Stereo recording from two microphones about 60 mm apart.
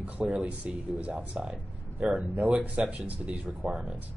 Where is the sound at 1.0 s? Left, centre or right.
Right.